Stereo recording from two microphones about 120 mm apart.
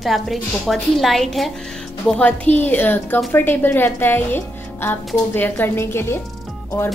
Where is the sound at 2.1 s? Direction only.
10° left (ahead or behind).